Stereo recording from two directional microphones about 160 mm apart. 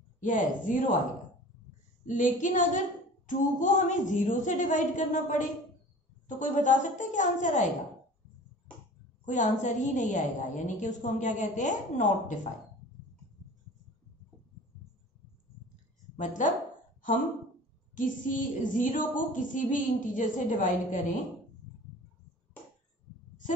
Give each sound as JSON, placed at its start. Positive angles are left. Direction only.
{"t": 0.2, "sound": "a woman's voice", "side_deg": 55}
{"t": 2.0, "sound": "a woman's voice", "side_deg": 55}
{"t": 9.2, "sound": "a woman's voice", "side_deg": 50}
{"t": 15.7, "sound": "a sound", "side_deg": 50}
{"t": 17.9, "sound": "speech", "side_deg": 55}